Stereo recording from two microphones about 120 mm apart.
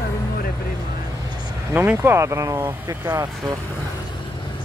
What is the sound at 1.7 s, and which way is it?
Speech, 15° right (ahead or behind).